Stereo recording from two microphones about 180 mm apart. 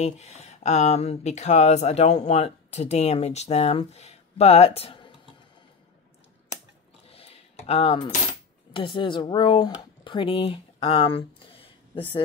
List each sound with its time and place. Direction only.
0.0 s speech: 35° left (ahead or behind)
7.1 s coin: 35° left (ahead or behind)
8.7 s speech: 25° left (ahead or behind)